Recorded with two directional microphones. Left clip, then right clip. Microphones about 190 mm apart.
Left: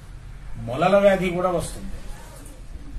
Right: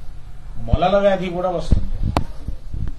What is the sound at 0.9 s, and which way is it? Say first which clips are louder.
Speech: even; 15° left (ahead or behind).